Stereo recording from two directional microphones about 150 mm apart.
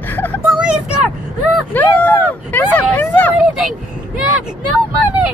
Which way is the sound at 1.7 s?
10° left (ahead or behind).